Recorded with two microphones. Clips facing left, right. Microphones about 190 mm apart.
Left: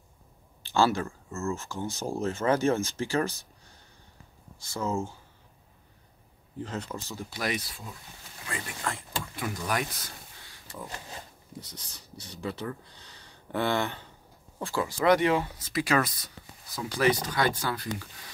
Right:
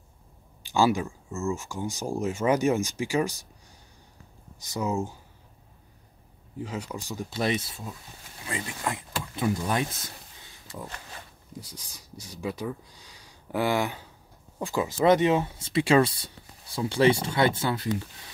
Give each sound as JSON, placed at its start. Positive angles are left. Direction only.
{"t": 0.7, "sound": "speech", "side_deg": -15}
{"t": 4.6, "sound": "speech", "side_deg": -15}
{"t": 6.6, "sound": "speech", "side_deg": -10}
{"t": 11.6, "sound": "speech", "side_deg": -10}